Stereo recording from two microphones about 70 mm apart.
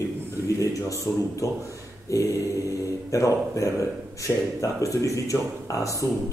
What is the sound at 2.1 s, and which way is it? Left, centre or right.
Speech, left.